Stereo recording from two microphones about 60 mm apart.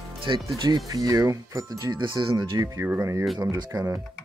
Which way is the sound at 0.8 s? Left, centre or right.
Right.